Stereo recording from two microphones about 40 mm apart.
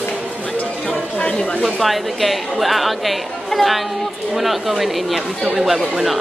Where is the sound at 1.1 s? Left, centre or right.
Left.